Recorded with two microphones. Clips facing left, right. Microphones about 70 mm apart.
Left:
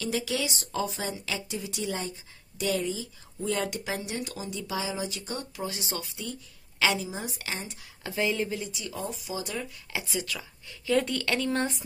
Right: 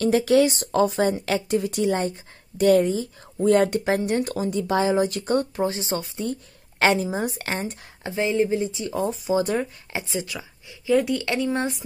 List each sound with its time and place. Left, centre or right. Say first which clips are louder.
0.0 s a woman's voice: right 12 dB; right
5.7 s a woman's voice: right 8 dB; right
8.0 s speech: right 6 dB; right
9.9 s speech: right 4 dB; right